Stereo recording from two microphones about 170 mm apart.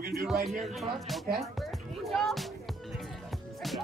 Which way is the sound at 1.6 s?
Centre (ahead or behind).